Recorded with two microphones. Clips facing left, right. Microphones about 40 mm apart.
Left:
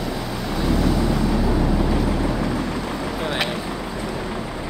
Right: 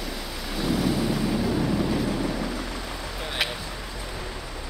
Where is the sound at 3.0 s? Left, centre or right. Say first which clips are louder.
Left 8 dB; centre.